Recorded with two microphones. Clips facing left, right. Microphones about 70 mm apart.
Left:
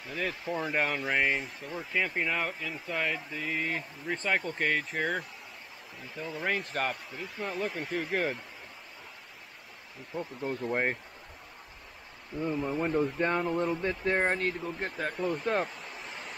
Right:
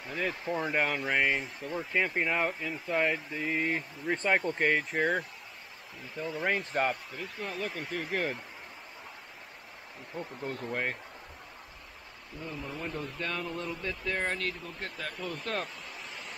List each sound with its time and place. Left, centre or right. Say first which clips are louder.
0.1 s speech: right 1 dB; centre
10.1 s speech: left 3 dB; centre
10.7 s speech: left 4 dB; left
12.4 s speech: left 9 dB; left
15.3 s speech: left 4 dB; centre
15.8 s a sound: left 2 dB; centre